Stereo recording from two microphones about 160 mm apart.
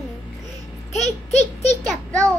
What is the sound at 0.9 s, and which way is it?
Speech, 45° left (ahead or behind).